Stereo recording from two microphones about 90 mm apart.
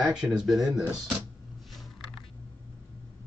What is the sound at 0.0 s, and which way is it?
Speech, 10° right (ahead or behind).